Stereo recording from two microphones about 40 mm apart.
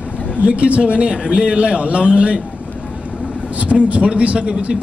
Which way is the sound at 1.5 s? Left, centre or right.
Right.